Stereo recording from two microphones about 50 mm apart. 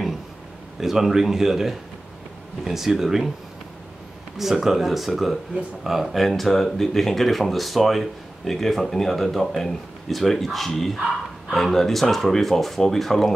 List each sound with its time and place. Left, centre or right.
0.7 s speech: centre
4.4 s speech: centre